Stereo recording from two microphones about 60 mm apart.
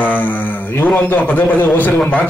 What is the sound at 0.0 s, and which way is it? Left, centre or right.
A man's voice, left.